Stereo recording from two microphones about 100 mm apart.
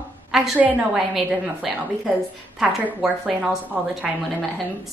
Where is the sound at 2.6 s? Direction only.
5° right (ahead or behind).